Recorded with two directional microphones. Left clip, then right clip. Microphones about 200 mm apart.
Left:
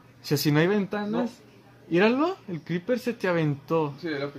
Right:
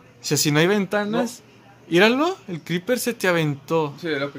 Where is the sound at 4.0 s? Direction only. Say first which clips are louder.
Right 6 dB; 55° right (ahead or behind).